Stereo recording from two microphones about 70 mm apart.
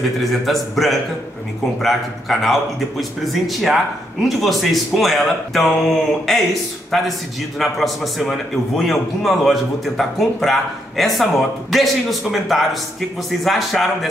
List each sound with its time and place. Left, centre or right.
0.2 s a man's voice: centre